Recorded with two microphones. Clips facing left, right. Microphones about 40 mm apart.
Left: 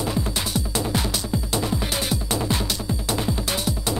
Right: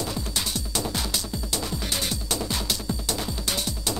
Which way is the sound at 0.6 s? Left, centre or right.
Left.